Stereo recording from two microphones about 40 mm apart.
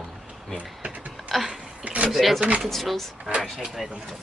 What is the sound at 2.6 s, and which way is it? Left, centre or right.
Speech, centre.